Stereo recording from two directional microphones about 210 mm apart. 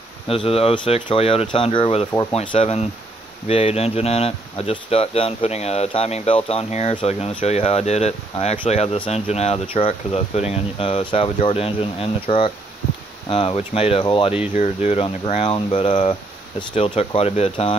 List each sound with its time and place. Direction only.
0.3 s speech: 25° left (ahead or behind)